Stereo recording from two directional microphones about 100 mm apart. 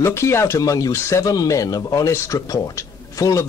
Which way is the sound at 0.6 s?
40° left (ahead or behind).